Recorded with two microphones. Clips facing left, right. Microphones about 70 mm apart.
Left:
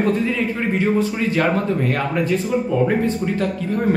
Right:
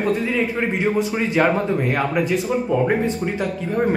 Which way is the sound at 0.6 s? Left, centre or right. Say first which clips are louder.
Left 1 dB; centre.